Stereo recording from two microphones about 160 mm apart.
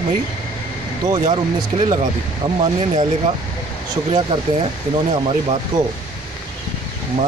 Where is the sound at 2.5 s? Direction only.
40° right (ahead or behind).